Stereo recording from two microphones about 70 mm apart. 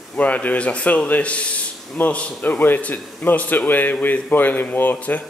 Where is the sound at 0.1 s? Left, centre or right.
Left.